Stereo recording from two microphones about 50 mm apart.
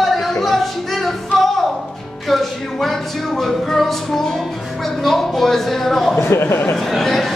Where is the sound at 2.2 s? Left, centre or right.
Centre.